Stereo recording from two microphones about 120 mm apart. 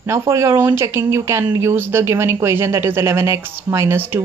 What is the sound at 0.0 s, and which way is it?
Speech, 25° right (ahead or behind).